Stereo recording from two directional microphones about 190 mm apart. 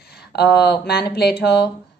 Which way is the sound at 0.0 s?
55° left (ahead or behind).